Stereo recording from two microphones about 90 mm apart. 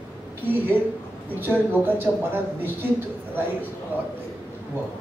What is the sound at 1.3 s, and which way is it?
Speech, 20° right (ahead or behind).